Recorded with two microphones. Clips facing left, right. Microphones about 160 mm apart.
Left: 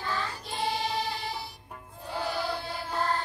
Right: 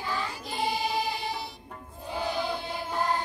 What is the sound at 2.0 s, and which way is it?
Choir, 20° right (ahead or behind).